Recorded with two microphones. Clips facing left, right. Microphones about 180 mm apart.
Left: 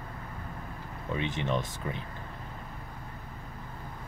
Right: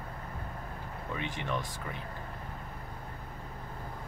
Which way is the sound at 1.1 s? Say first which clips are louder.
Left 5 dB; 20° left (ahead or behind).